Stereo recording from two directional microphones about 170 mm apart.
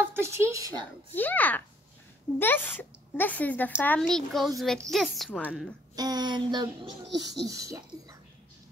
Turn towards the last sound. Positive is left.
turn(degrees=-20)  # may be behind; listen again after turning